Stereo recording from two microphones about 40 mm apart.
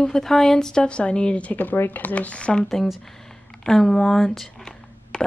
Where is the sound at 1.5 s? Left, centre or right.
Left.